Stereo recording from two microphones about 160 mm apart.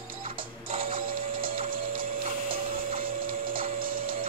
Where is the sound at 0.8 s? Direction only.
60° right (ahead or behind).